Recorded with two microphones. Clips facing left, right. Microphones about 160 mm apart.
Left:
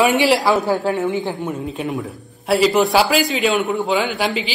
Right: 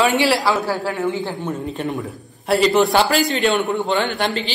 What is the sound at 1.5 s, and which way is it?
A man's voice, centre (ahead or behind).